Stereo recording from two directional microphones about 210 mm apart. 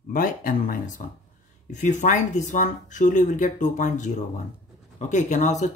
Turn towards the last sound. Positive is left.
turn(degrees=35)  # may be behind; listen again after turning